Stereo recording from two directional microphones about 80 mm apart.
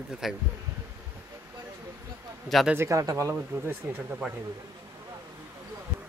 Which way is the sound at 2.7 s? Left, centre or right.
Right.